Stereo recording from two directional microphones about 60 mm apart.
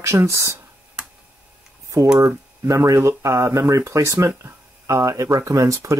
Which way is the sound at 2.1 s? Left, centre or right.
Right.